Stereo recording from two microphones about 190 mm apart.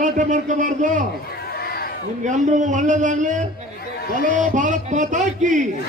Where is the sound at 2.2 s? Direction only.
40° right (ahead or behind).